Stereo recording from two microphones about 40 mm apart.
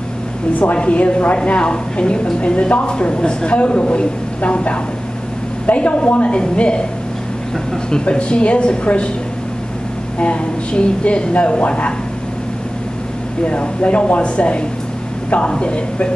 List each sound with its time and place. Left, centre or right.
0.7 s a woman's voice: left
8.0 s a woman's voice: left
10.1 s a woman's voice: left
13.4 s a woman's voice: left